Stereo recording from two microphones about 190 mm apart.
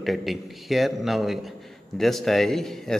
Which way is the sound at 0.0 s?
Centre (ahead or behind).